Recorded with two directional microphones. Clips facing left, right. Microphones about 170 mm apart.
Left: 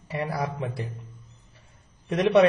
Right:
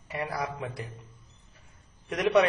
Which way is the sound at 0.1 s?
30° left (ahead or behind).